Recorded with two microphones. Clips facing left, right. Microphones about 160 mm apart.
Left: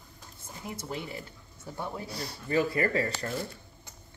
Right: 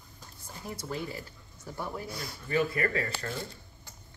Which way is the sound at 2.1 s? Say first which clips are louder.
Left 3 dB; 35° left (ahead or behind).